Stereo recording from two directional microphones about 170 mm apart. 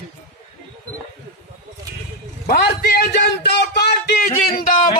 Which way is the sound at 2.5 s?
65° left (ahead or behind).